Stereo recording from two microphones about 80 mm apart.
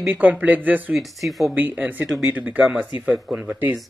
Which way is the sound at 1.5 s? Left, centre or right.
Right.